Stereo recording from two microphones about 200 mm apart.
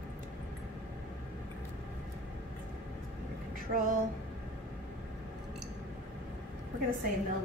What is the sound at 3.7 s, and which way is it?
Speech, 45° right (ahead or behind).